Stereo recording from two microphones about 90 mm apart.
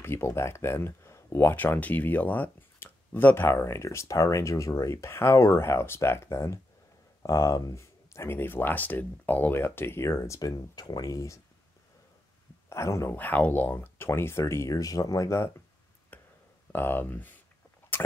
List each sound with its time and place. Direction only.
0.0 s speech: 30° left (ahead or behind)
12.6 s speech: 30° left (ahead or behind)
13.1 s speech: 20° left (ahead or behind)
16.1 s a sound: 20° left (ahead or behind)
16.7 s speech: 20° left (ahead or behind)